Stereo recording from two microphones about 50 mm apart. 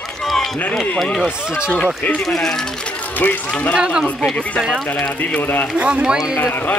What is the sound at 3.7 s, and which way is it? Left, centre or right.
Speech, centre.